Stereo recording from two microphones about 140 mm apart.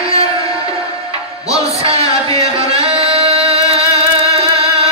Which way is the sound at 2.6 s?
40° right (ahead or behind).